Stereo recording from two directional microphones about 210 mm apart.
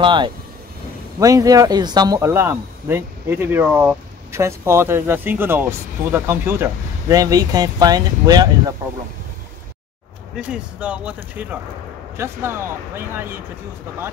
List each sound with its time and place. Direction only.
0.0 s speech: 20° right (ahead or behind)
10.3 s speech: 5° right (ahead or behind)